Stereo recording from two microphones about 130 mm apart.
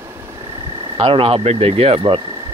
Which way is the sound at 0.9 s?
45° right (ahead or behind).